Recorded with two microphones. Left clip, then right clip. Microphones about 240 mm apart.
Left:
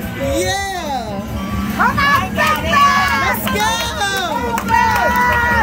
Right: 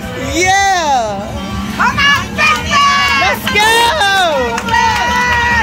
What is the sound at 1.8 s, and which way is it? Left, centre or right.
Children playing, left.